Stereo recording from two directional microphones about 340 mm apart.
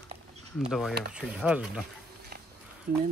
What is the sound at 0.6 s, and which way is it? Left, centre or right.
Speech, centre.